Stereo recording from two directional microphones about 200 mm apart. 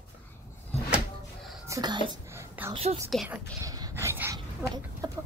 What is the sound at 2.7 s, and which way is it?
Speech, 30° right (ahead or behind).